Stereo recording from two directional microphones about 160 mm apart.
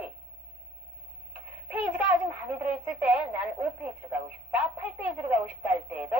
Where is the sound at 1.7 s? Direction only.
10° right (ahead or behind).